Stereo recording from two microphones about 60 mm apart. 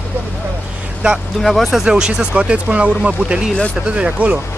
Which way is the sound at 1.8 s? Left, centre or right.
Centre.